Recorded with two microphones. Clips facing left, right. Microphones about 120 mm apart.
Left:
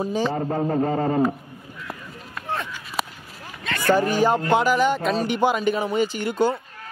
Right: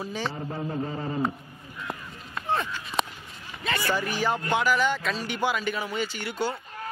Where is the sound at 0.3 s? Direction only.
50° left (ahead or behind).